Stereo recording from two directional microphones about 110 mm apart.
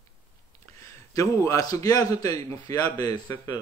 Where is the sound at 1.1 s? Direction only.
30° left (ahead or behind).